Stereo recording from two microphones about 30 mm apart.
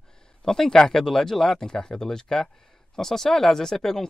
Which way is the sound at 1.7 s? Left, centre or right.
Left.